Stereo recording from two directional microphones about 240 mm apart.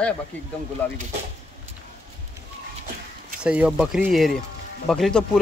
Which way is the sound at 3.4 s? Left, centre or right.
Centre.